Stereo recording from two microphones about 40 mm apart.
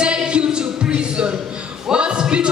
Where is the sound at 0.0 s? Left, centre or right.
Right.